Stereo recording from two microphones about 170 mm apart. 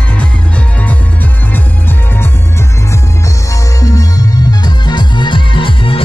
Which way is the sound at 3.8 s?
20° left (ahead or behind).